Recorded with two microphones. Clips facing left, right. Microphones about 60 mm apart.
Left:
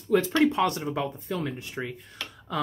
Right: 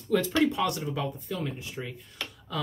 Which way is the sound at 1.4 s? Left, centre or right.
Left.